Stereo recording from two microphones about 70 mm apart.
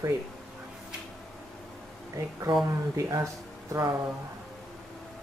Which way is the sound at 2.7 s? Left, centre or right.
Right.